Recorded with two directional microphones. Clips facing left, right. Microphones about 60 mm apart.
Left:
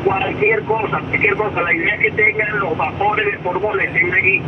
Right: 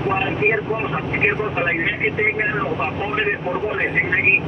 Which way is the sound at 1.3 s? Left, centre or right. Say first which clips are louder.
Left 4 dB; left.